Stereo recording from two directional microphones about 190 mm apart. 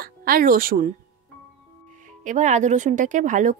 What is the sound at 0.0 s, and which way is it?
Speech, 50° right (ahead or behind).